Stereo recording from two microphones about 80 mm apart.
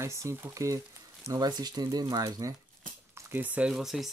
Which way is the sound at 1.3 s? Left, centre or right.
Right.